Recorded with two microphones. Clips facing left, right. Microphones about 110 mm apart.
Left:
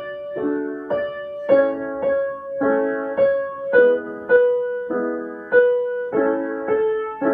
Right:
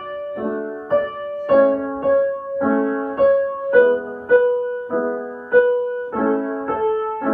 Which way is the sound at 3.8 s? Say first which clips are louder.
Even; 30° right (ahead or behind).